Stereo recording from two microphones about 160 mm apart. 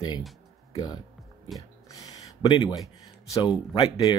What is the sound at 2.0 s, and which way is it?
Speech, 30° left (ahead or behind).